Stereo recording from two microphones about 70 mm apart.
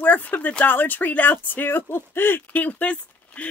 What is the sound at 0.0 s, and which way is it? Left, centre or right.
Speech, left.